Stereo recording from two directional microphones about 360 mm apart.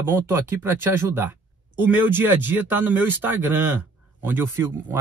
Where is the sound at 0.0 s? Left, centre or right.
Centre.